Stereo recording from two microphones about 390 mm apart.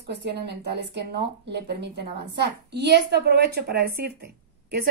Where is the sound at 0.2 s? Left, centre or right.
Right.